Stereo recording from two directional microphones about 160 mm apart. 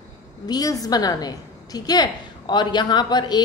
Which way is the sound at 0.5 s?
20° left (ahead or behind).